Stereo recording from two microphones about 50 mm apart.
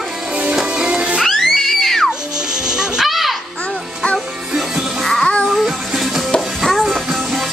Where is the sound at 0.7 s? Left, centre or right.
Centre.